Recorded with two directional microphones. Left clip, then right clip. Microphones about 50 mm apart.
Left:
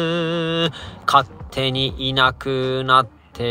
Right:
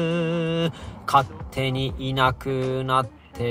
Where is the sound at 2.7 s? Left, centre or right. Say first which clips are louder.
Left 9 dB; left.